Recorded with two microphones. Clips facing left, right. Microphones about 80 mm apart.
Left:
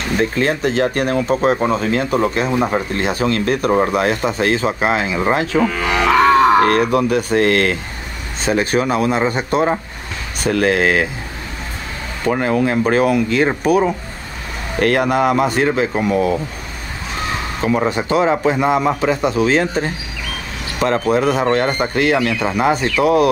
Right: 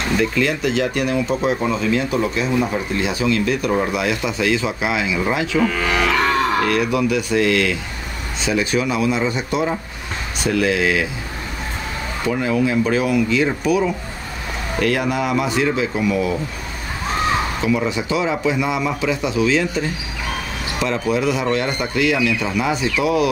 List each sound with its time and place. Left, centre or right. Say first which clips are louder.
0.1 s speech: left 2 dB; left
5.6 s livestock: left 2 dB; centre
6.6 s speech: left 4 dB; left
12.3 s speech: left 3 dB; left
17.6 s speech: left 3 dB; left
21.1 s speech: left 3 dB; left